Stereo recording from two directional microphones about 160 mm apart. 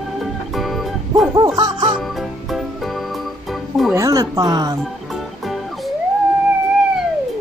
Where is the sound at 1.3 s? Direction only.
25° right (ahead or behind).